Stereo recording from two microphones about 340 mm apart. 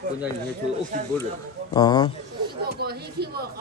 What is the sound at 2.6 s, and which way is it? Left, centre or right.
Speech, right.